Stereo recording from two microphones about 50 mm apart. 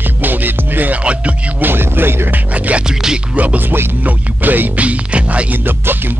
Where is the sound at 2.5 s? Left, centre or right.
Right.